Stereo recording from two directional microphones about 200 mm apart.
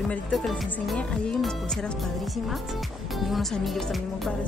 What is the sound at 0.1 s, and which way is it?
Speech, centre (ahead or behind).